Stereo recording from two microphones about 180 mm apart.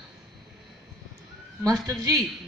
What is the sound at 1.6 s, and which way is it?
Speech, 20° right (ahead or behind).